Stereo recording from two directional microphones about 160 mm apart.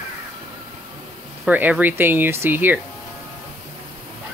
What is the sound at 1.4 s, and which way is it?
Speech, 10° right (ahead or behind).